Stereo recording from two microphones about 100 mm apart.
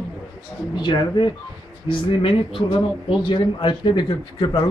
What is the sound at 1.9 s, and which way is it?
A man's voice, 60° left (ahead or behind).